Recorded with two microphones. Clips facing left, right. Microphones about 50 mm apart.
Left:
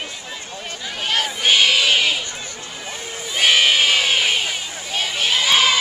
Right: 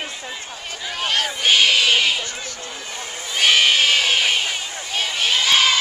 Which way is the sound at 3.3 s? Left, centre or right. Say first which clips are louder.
Even; centre.